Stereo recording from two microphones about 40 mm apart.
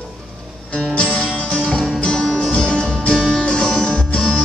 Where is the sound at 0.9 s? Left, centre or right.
Left.